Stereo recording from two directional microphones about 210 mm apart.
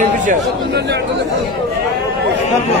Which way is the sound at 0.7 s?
50° right (ahead or behind).